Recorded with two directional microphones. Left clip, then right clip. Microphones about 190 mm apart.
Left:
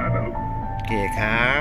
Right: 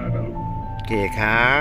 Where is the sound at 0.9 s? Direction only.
20° right (ahead or behind).